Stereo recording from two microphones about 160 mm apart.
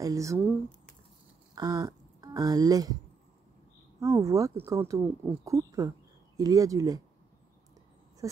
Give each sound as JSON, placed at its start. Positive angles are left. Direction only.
{"t": 0.0, "sound": "speech", "side_deg": -20}
{"t": 4.0, "sound": "speech", "side_deg": -20}
{"t": 8.2, "sound": "a sound", "side_deg": -20}